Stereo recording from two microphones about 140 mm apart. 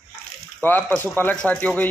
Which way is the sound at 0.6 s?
15° left (ahead or behind).